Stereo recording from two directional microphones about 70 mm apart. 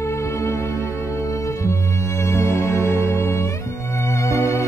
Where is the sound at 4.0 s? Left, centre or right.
Left.